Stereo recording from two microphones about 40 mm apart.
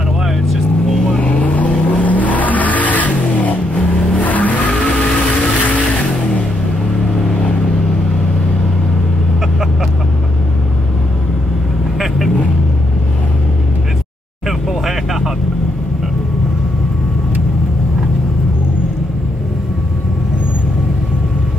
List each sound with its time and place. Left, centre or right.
1.2 s vehicle: left